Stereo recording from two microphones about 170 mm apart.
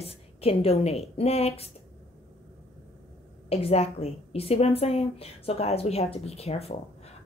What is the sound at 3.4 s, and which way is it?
A woman's voice, 35° left (ahead or behind).